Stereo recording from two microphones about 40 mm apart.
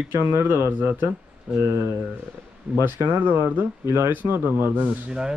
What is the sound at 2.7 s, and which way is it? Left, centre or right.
Speech, right.